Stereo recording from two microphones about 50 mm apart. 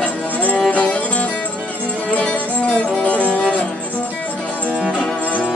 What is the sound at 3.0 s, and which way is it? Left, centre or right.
Music, left.